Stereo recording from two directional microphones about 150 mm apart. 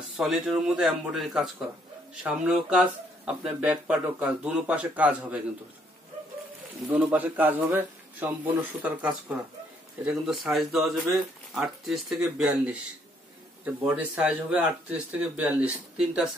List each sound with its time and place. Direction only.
0.2 s speech: 5° right (ahead or behind)
6.9 s speech: 10° right (ahead or behind)
13.8 s speech: 10° right (ahead or behind)